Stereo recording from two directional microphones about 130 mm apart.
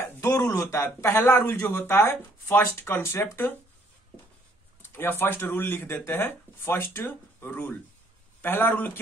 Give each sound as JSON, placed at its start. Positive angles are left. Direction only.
{"t": 0.0, "sound": "speech", "side_deg": 25}
{"t": 4.9, "sound": "speech", "side_deg": 15}